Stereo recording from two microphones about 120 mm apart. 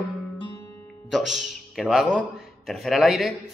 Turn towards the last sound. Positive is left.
turn(degrees=0)  # may be behind; listen again after turning